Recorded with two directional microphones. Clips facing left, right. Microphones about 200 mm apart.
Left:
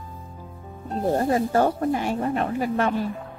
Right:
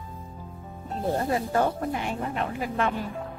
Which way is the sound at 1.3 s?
40° left (ahead or behind).